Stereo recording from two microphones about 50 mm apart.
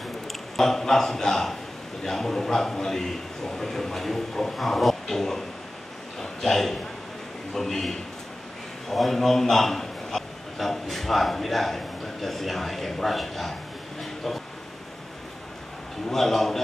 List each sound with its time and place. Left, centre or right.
0.3 s a man's voice: centre
16.1 s a man's voice: centre